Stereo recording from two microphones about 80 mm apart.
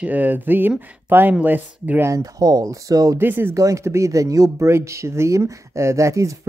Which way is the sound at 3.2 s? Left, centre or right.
Right.